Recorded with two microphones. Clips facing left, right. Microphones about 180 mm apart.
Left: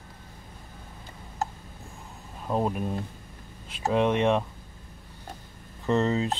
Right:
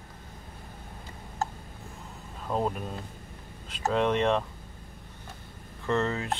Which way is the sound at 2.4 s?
15° left (ahead or behind).